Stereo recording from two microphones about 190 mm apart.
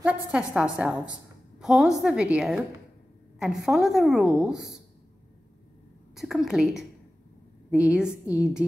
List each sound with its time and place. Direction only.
0.0 s a woman's voice: 5° right (ahead or behind)
6.1 s a woman's voice: centre (ahead or behind)